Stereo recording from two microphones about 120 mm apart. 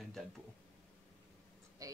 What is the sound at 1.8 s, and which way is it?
Speech, 30° right (ahead or behind).